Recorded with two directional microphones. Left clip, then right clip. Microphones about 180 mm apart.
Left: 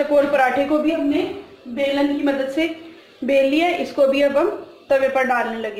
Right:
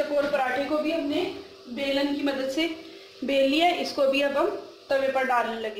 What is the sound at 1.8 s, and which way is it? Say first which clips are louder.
A woman's voice: left 7 dB; centre (ahead or behind).